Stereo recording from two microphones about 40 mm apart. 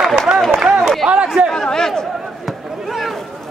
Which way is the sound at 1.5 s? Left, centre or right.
Centre.